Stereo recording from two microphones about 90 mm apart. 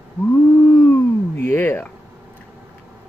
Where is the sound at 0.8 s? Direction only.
25° left (ahead or behind).